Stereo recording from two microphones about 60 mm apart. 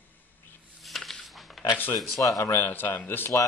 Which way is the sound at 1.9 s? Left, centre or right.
Centre.